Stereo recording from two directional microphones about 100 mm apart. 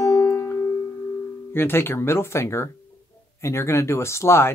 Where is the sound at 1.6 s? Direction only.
20° left (ahead or behind).